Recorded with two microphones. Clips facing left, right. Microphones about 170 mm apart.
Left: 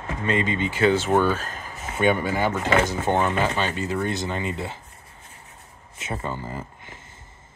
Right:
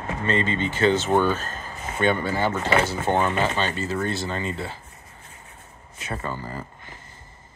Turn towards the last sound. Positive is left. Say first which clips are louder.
# left 1 dB
turn(degrees=20)  # may be behind; listen again after turning